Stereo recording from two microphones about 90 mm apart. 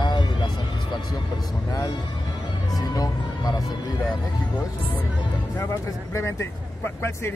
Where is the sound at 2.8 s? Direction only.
45° left (ahead or behind).